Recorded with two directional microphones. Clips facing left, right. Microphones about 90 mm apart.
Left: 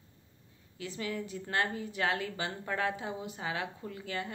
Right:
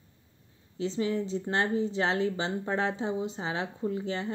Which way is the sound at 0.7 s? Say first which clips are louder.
Right 8 dB; 25° right (ahead or behind).